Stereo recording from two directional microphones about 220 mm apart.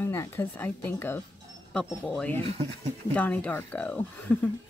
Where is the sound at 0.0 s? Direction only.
10° left (ahead or behind).